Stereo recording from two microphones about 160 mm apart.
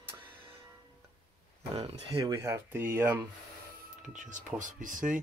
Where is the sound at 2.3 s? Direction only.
15° right (ahead or behind).